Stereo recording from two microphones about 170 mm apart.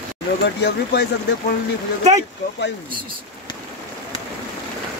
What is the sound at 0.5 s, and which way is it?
Speech, 80° left.